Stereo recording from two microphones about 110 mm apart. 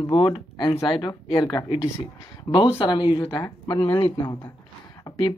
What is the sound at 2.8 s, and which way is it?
Speech, 50° left (ahead or behind).